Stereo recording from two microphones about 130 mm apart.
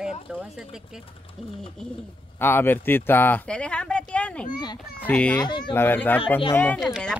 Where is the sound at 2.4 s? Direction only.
15° left (ahead or behind).